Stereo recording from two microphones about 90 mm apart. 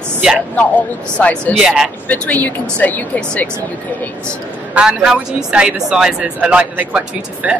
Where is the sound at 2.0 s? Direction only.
15° left (ahead or behind).